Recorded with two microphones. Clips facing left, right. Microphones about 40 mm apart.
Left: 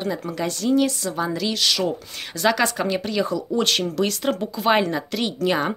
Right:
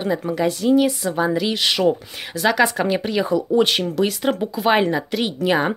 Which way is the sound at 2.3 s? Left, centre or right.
Centre.